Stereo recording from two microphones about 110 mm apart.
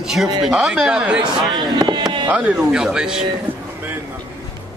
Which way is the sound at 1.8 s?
40° right (ahead or behind).